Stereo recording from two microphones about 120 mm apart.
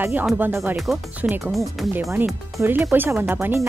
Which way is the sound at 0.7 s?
Centre (ahead or behind).